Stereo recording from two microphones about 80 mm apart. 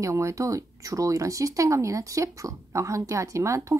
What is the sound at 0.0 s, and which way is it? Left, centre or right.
Speech, right.